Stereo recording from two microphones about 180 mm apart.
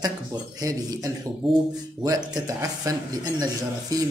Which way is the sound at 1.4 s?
Centre (ahead or behind).